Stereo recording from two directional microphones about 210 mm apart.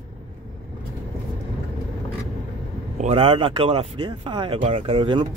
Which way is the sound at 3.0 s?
30° right (ahead or behind).